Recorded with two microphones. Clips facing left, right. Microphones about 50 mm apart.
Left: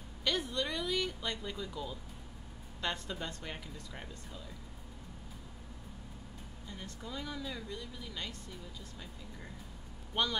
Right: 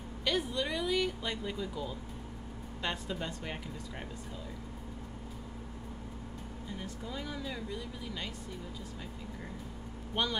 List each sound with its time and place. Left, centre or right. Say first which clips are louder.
0.2 s speech: right 2 dB; centre
6.7 s speech: right 2 dB; centre
10.1 s speech: even; centre